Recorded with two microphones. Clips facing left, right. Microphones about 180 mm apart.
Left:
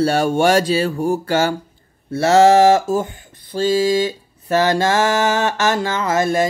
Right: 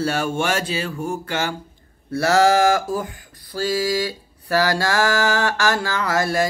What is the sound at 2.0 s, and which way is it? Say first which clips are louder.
Mantra: left 5 dB; 25° left (ahead or behind).